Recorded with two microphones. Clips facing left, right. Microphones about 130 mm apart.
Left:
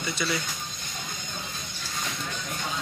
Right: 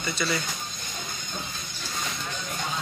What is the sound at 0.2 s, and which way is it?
Speech, 10° left (ahead or behind).